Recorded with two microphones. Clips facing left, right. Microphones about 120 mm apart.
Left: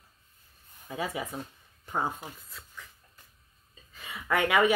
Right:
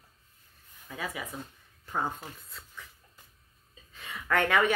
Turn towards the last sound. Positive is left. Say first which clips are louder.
# left 1 dB
turn(degrees=10)  # may be behind; listen again after turning